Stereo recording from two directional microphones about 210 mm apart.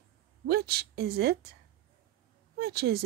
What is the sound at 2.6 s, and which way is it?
Speech, 50° right (ahead or behind).